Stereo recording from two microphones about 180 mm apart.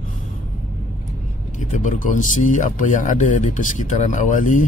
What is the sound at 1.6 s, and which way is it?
Speech, 45° left (ahead or behind).